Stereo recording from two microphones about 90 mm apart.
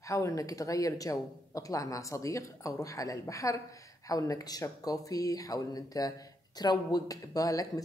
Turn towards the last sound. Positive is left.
turn(degrees=40)  # may be behind; listen again after turning